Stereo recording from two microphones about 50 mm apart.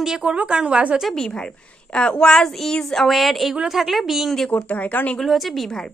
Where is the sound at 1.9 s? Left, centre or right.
Centre.